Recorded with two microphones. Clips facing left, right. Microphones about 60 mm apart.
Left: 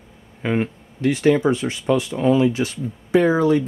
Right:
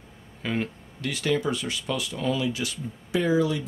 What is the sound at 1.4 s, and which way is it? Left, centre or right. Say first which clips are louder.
Speech: left 8 dB; left.